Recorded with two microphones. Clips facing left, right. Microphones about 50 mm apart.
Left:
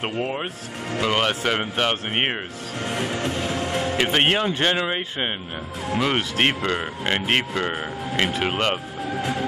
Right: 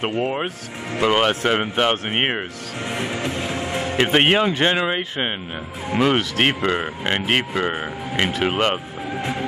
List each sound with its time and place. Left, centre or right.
0.0 s speech: centre; by 4.7 s right
4.7 s speech: centre
6.3 s speech: centre
9.1 s music: right